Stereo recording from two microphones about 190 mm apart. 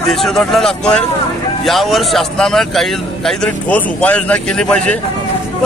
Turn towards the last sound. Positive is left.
turn(degrees=5)  # may be behind; listen again after turning